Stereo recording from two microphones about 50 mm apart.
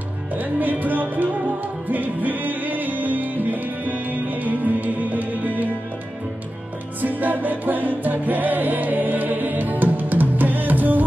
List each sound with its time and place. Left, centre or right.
0.3 s music: right
7.0 s music: right